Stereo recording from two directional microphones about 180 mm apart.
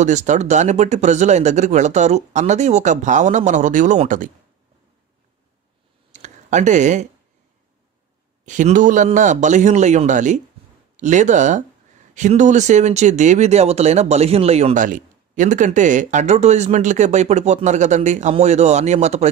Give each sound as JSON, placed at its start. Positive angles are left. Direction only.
{"t": 0.0, "sound": "speech", "side_deg": -40}
{"t": 6.1, "sound": "a sound", "side_deg": -40}
{"t": 8.5, "sound": "a man's voice", "side_deg": -45}